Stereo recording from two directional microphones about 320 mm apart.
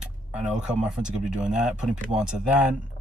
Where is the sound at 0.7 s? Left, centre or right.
Centre.